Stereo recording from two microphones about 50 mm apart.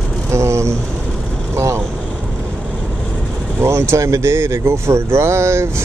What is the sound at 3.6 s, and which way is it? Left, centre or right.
Speech, right.